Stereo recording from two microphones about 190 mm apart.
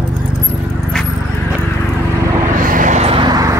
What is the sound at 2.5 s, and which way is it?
Vehicle, 45° right (ahead or behind).